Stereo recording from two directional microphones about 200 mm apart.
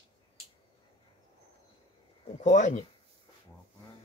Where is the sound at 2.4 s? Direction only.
35° left (ahead or behind).